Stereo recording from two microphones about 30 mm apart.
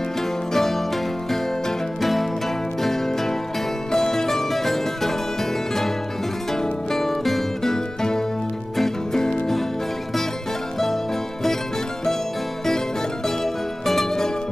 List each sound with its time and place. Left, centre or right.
0.5 s music: centre
2.0 s music: centre
13.4 s music: centre